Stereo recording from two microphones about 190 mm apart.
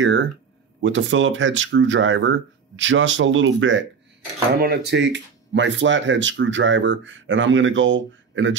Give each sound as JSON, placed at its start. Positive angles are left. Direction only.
{"t": 0.0, "sound": "speech", "side_deg": -80}
{"t": 4.6, "sound": "speech", "side_deg": -60}